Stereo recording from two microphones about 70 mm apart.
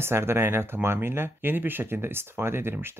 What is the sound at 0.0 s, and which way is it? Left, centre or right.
Speech, right.